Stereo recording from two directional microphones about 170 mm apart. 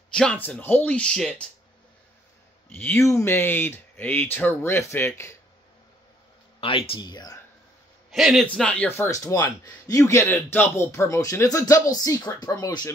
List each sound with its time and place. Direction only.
0.1 s speech: 5° left (ahead or behind)
2.7 s speech: 10° left (ahead or behind)
6.9 s a man's voice: 25° left (ahead or behind)
8.1 s a man's voice: centre (ahead or behind); by 12.9 s 20° left (ahead or behind)